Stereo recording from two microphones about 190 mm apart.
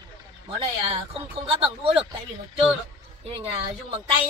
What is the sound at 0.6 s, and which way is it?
Speech, 30° right (ahead or behind).